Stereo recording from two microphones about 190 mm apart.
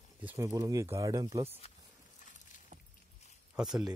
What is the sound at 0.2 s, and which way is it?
Speech, 10° right (ahead or behind).